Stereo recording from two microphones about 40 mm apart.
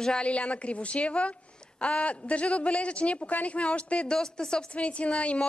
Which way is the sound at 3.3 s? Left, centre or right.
Left.